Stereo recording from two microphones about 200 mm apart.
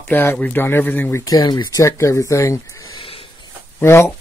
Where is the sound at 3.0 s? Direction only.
25° left (ahead or behind).